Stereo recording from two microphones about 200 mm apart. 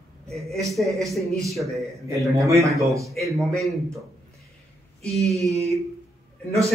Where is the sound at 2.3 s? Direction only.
15° right (ahead or behind).